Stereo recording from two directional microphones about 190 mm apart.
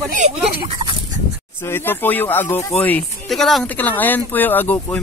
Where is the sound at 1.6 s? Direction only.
10° left (ahead or behind).